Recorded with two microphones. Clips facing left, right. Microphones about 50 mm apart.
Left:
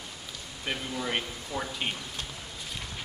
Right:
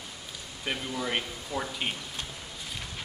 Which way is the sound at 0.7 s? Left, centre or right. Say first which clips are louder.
Right 1 dB; centre.